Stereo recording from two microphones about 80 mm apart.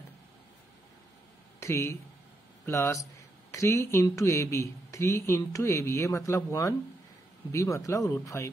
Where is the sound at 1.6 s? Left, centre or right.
Left.